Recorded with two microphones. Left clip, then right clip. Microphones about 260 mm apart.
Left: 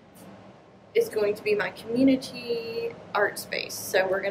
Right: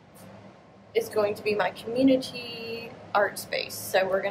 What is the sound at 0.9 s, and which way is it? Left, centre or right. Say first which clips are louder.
A woman's voice: left 1 dB; centre.